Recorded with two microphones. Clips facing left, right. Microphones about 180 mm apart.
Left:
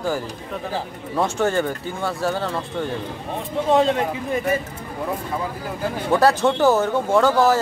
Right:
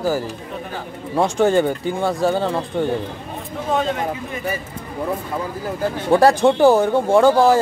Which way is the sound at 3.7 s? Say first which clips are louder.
Left 3 dB; 30° left (ahead or behind).